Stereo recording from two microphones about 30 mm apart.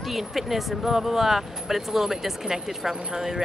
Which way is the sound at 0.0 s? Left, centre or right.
Centre.